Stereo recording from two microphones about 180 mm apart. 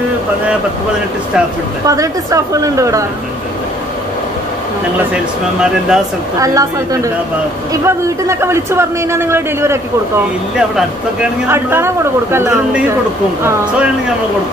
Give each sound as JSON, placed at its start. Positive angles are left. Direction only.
{"t": 1.9, "sound": "a man's voice", "side_deg": -20}
{"t": 5.1, "sound": "speech", "side_deg": -5}
{"t": 6.4, "sound": "a man's voice", "side_deg": -20}
{"t": 10.8, "sound": "a man's voice", "side_deg": -10}